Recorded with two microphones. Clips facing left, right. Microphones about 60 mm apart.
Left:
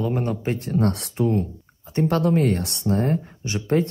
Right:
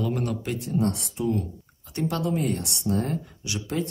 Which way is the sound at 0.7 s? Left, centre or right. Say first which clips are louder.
Left 2 dB; left.